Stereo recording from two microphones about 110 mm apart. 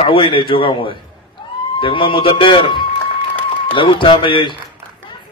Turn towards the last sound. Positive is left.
turn(degrees=50)  # may be behind; listen again after turning